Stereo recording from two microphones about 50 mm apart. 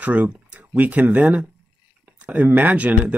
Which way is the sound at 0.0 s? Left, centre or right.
Right.